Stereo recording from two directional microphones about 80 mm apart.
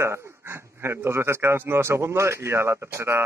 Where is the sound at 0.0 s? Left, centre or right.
Right.